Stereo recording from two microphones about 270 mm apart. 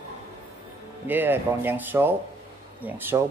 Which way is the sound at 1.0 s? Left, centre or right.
Centre.